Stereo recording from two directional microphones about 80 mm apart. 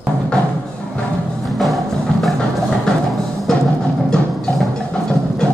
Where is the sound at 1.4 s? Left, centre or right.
Centre.